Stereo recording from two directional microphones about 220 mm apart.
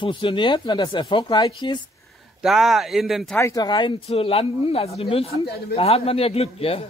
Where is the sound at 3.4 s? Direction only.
15° left (ahead or behind).